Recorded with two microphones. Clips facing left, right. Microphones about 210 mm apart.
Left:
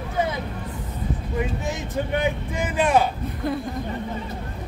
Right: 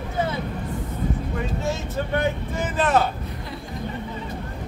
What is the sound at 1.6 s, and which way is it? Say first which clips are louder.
Speech: right 1 dB; 15° left (ahead or behind).